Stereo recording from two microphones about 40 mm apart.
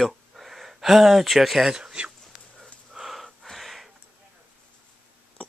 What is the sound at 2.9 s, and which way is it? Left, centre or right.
Wheeze, centre.